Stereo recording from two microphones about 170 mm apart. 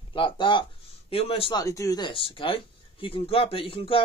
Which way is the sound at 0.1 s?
30° left (ahead or behind).